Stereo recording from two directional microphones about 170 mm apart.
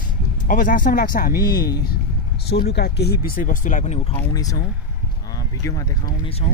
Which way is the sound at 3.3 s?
50° left (ahead or behind).